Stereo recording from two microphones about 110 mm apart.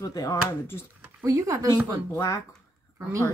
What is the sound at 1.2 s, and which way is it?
Speech, 25° right (ahead or behind).